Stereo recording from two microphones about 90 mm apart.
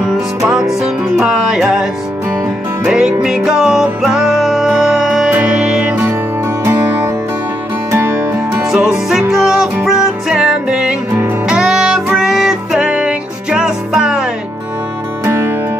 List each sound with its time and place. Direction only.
0.5 s music: 5° right (ahead or behind)
5.3 s music: 15° right (ahead or behind)
7.9 s music: 25° right (ahead or behind)
8.6 s music: 5° right (ahead or behind)
15.2 s music: 25° right (ahead or behind)